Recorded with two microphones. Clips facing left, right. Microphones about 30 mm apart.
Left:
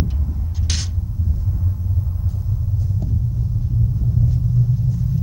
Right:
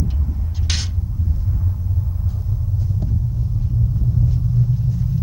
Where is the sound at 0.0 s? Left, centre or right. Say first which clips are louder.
Even; centre.